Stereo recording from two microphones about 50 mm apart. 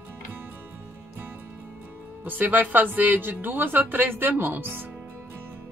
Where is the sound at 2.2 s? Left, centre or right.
Right.